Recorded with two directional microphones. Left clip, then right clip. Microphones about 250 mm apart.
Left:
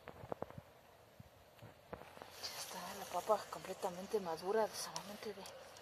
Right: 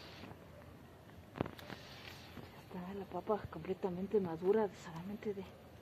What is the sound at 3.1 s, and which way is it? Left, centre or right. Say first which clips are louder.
Speech: left 2 dB; left.